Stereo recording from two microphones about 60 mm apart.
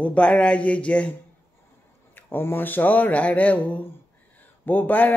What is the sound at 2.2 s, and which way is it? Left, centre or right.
Speech, left.